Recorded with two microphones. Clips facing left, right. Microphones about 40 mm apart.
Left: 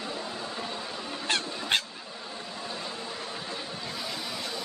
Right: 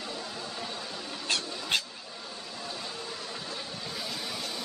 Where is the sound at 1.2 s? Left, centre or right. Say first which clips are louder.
Left 3 dB; left.